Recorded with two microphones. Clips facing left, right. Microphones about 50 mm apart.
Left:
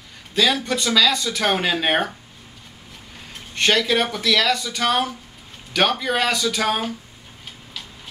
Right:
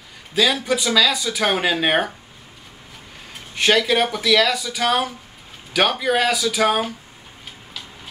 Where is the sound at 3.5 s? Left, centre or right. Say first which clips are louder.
Right 1 dB; centre.